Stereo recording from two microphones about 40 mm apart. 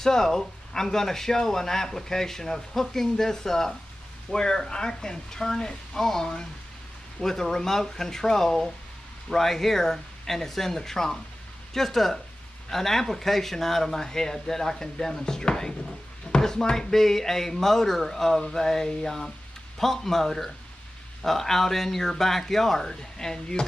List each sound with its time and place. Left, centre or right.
0.0 s speech: centre